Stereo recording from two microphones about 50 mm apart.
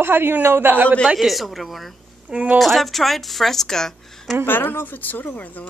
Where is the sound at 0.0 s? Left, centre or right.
Right.